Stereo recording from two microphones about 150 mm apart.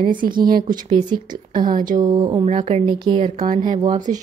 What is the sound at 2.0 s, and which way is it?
Speech, 30° right (ahead or behind).